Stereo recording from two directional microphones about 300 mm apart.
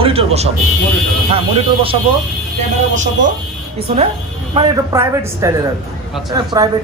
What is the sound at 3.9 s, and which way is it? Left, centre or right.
A woman's voice, centre.